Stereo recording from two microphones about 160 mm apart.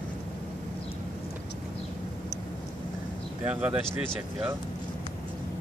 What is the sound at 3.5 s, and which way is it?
Speech, 10° right (ahead or behind).